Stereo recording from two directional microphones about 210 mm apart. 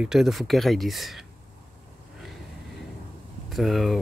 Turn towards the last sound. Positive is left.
turn(degrees=0)  # may be behind; listen again after turning